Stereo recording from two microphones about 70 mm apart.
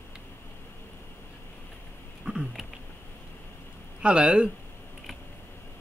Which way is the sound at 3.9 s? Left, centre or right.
Centre.